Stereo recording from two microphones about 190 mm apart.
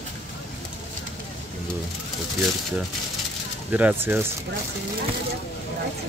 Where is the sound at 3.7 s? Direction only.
10° right (ahead or behind).